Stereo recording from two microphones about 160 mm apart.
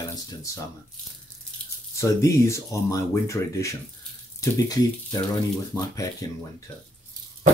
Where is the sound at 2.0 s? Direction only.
20° left (ahead or behind).